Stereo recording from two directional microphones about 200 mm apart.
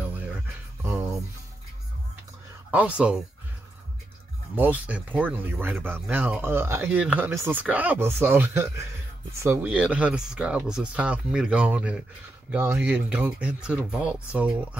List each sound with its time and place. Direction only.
0.8 s music: 10° right (ahead or behind)
2.7 s speech: 5° right (ahead or behind)
4.6 s speech: 10° right (ahead or behind)